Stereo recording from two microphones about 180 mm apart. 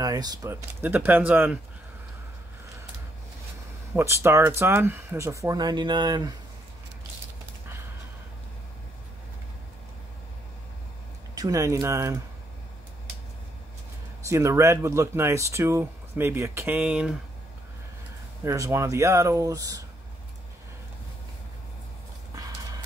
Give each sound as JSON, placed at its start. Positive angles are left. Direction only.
{"t": 0.0, "sound": "speech", "side_deg": -20}
{"t": 3.9, "sound": "speech", "side_deg": -15}
{"t": 11.3, "sound": "speech", "side_deg": -20}
{"t": 14.2, "sound": "speech", "side_deg": -15}
{"t": 18.4, "sound": "speech", "side_deg": -15}
{"t": 22.3, "sound": "clip-clop", "side_deg": -20}